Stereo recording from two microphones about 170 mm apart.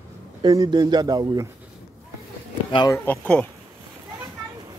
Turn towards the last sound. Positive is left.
turn(degrees=10)  # may be behind; listen again after turning